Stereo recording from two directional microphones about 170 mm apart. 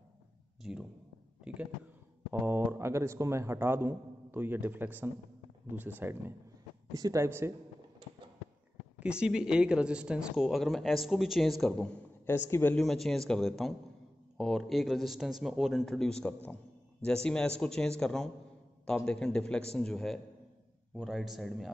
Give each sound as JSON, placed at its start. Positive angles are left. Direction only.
{"t": 0.6, "sound": "a sound", "side_deg": 0}
{"t": 2.4, "sound": "a man's voice", "side_deg": -15}
{"t": 9.0, "sound": "speech", "side_deg": -5}
{"t": 12.4, "sound": "speech", "side_deg": 15}
{"t": 12.7, "sound": "speech", "side_deg": 0}